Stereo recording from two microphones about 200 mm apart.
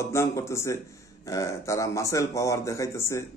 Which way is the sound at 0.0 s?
15° left (ahead or behind).